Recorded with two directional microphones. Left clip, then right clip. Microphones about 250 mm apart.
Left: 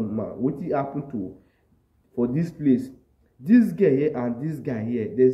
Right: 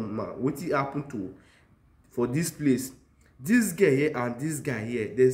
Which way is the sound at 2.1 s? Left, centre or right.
Centre.